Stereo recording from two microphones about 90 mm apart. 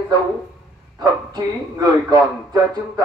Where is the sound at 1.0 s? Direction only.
50° right (ahead or behind).